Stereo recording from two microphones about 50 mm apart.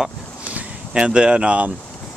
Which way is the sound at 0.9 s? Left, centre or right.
Centre.